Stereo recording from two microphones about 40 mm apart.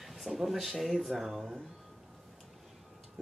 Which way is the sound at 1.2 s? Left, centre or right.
Centre.